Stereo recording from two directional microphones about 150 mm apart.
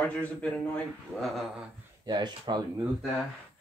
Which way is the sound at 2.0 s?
30° right (ahead or behind).